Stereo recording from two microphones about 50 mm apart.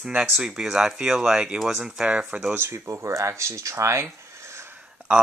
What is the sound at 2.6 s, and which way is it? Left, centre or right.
Speech, right.